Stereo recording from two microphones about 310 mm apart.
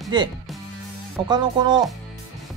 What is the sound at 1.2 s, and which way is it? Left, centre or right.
Speech, centre.